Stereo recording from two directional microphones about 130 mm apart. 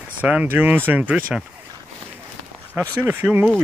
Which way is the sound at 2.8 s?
15° right (ahead or behind).